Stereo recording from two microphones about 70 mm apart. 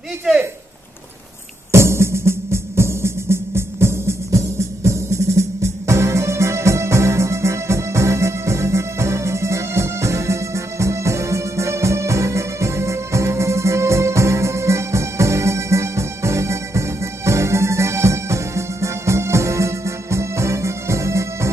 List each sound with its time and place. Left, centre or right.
1.7 s music: right